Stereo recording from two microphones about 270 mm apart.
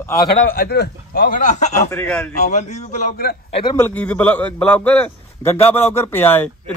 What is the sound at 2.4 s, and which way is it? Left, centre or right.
Speech, left.